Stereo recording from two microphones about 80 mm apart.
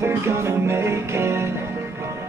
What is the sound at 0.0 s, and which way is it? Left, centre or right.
Music, right.